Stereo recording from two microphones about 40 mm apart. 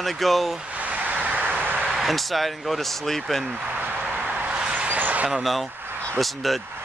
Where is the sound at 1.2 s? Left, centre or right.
Right.